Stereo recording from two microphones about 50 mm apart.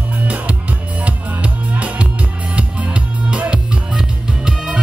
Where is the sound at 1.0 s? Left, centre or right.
Right.